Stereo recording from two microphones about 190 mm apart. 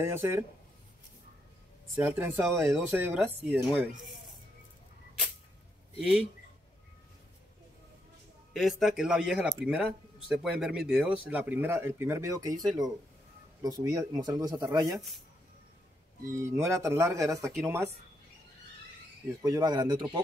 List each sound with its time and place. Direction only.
0.0 s speech: 15° right (ahead or behind)
2.0 s speech: 10° right (ahead or behind)
5.9 s speech: centre (ahead or behind)
8.5 s speech: centre (ahead or behind); by 12.5 s 15° right (ahead or behind)
13.8 s speech: 20° right (ahead or behind)
16.3 s speech: 15° right (ahead or behind)
19.4 s speech: 20° right (ahead or behind)